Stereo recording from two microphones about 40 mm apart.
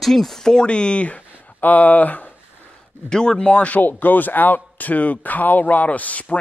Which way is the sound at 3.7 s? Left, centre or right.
Left.